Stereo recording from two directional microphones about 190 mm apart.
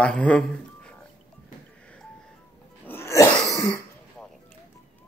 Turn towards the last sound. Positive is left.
turn(degrees=15)  # may be behind; listen again after turning